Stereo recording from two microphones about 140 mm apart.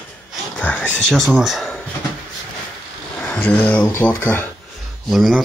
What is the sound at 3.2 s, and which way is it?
Speech, 10° left (ahead or behind).